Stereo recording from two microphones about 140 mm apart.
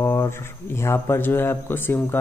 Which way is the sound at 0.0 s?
20° left (ahead or behind).